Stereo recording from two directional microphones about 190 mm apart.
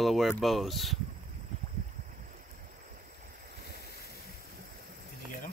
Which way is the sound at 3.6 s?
55° right (ahead or behind).